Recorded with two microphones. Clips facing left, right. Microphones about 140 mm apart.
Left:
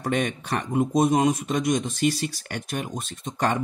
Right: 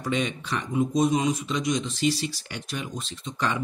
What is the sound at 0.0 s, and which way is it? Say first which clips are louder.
Speech: left 2 dB; 50° left (ahead or behind).